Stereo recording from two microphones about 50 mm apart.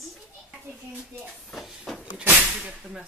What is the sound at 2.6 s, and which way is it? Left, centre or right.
Speech, centre.